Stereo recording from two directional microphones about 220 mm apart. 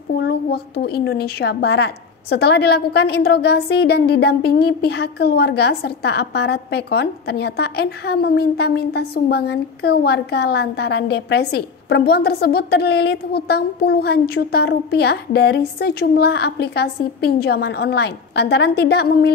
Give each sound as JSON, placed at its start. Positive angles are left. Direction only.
{"t": 0.2, "sound": "a woman's voice", "side_deg": 50}